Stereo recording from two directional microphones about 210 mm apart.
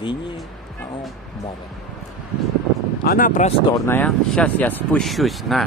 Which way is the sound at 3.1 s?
40° left (ahead or behind).